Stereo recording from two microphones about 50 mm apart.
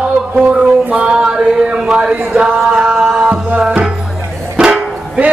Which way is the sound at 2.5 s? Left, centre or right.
Centre.